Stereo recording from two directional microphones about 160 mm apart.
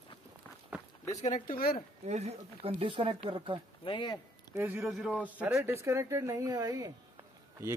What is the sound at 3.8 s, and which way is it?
Speech, 30° left (ahead or behind).